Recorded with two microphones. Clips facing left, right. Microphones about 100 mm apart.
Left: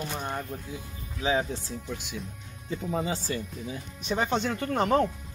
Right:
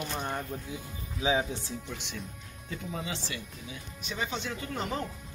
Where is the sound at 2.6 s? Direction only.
35° left (ahead or behind); by 5.1 s 55° left (ahead or behind).